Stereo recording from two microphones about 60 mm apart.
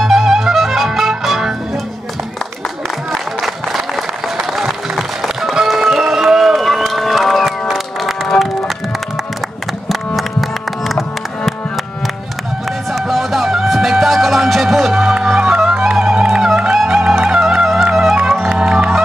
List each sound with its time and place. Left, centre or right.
0.0 s music: centre
3.1 s a sound: centre
4.4 s music: centre
9.8 s music: centre
12.9 s music: centre